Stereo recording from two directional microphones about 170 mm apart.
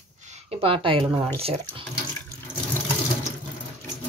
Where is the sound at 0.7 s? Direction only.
30° right (ahead or behind).